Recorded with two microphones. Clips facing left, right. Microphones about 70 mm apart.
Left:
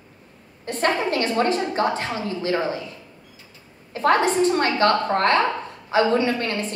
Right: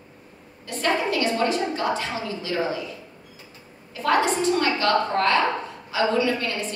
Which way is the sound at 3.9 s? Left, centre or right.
Left.